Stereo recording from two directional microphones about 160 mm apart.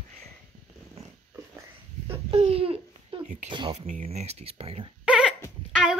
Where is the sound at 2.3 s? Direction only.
35° right (ahead or behind).